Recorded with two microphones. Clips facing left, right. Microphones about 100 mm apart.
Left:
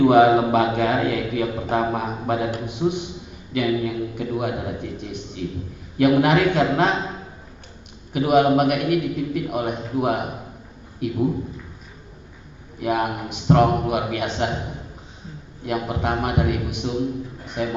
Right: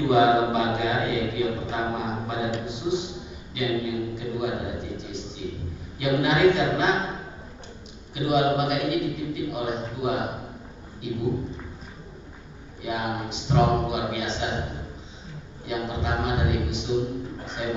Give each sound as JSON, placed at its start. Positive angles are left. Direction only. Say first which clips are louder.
{"t": 0.0, "sound": "a man's voice", "louder": "left 5 dB", "side_deg": 55}
{"t": 8.1, "sound": "a man's voice", "louder": "left 6 dB", "side_deg": 55}
{"t": 12.8, "sound": "a man's voice", "louder": "left 6 dB", "side_deg": 55}
{"t": 15.6, "sound": "a man's voice", "louder": "left 5 dB", "side_deg": 55}